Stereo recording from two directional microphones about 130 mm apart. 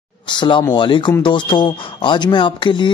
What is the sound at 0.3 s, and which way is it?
Speech, 35° left (ahead or behind).